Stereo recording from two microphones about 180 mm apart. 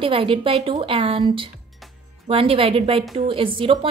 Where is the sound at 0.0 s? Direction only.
30° right (ahead or behind).